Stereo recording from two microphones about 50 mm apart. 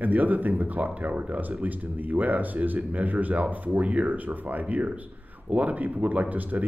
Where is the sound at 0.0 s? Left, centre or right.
Right.